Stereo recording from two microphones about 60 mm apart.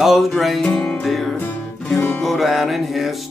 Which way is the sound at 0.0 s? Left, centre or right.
Centre.